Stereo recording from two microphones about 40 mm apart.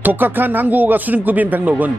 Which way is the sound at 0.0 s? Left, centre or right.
Right.